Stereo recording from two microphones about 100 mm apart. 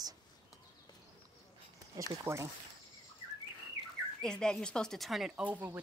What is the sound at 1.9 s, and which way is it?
Speech, 30° right (ahead or behind).